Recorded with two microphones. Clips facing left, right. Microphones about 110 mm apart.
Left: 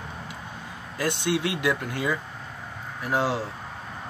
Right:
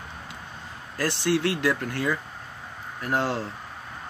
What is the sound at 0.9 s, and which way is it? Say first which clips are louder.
Speech: right 1 dB; 15° left (ahead or behind).